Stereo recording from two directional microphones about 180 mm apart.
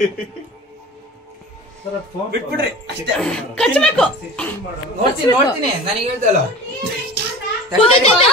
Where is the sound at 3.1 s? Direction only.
5° left (ahead or behind).